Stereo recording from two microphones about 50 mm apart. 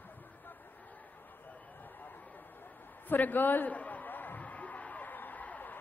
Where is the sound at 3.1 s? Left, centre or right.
Left.